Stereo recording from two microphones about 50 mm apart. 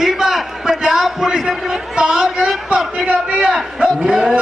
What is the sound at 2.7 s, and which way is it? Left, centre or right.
A man's voice, centre.